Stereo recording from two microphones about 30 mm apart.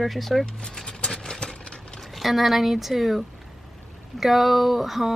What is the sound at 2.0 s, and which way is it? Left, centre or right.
Speech, centre.